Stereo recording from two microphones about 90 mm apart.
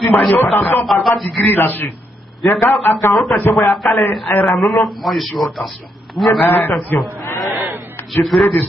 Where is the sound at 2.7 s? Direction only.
Centre (ahead or behind).